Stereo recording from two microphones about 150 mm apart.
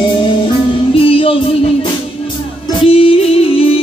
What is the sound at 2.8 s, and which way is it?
Music, 40° left (ahead or behind).